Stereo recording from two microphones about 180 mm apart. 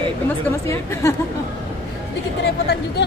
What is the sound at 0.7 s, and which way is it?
Speech, 15° left (ahead or behind).